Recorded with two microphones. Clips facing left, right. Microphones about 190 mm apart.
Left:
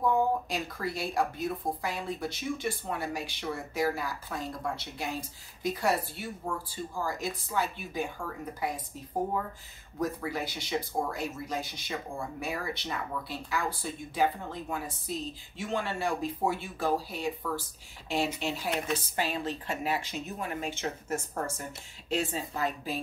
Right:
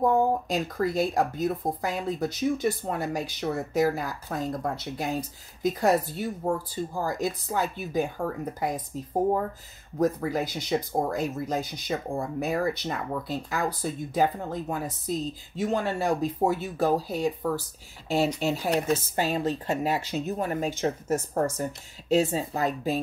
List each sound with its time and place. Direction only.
0.0 s speech: 45° right (ahead or behind)
9.9 s speech: 45° right (ahead or behind)